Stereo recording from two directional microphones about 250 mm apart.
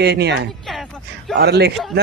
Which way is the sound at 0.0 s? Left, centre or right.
Right.